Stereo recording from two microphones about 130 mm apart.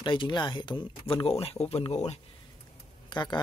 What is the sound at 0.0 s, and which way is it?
Speech, 40° left (ahead or behind).